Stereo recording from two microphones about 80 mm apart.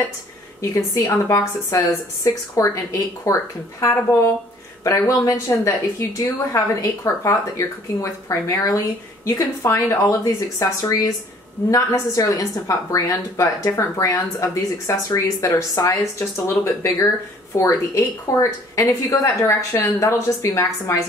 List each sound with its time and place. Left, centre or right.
0.6 s speech: left
4.8 s speech: left
16.2 s speech: left